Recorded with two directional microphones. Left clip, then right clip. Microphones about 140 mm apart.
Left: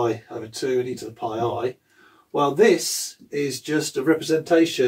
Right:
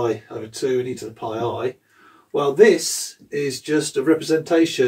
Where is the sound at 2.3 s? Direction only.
25° left (ahead or behind).